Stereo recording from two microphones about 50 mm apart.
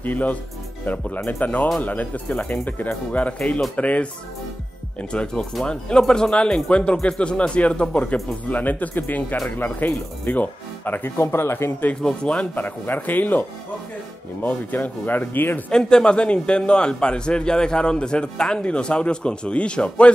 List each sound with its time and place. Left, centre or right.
0.0 s a man's voice: left
5.1 s a man's voice: centre; by 11.7 s left
12.0 s speech: centre
12.6 s speech: left
15.7 s a man's voice: centre